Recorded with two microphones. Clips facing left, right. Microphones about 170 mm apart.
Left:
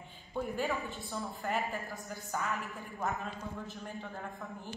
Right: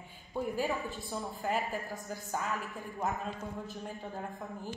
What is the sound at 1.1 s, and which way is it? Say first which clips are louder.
Speech: right 1 dB; 15° right (ahead or behind).